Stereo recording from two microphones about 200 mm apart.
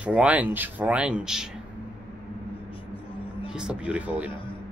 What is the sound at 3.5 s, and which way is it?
Speech, 5° right (ahead or behind).